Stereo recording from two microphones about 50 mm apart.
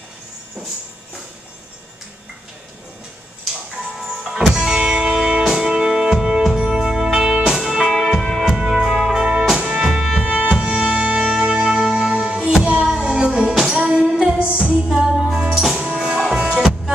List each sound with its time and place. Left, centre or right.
3.9 s music: centre
7.5 s music: centre
8.5 s music: centre
9.8 s music: centre
10.2 s music: right
10.5 s music: centre